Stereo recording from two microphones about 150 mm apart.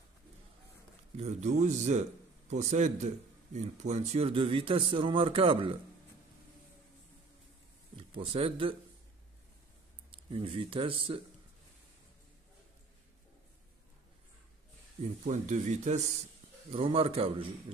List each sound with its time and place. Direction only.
1.1 s speech: 50° right (ahead or behind)
7.9 s speech: 35° right (ahead or behind)
10.1 s speech: 35° right (ahead or behind)
15.2 s speech: 50° right (ahead or behind)
16.7 s speech: 40° right (ahead or behind)